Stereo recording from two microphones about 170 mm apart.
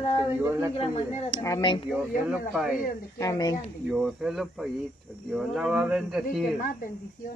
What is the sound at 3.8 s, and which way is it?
A man's voice, centre (ahead or behind).